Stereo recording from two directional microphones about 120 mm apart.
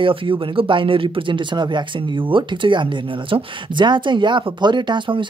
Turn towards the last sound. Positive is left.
turn(degrees=-40)  # may be behind; listen again after turning